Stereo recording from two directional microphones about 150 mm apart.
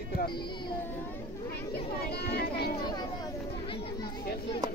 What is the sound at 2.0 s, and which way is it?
Speech, 90° left.